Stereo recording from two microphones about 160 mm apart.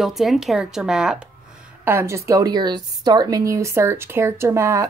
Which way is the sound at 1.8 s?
15° right (ahead or behind).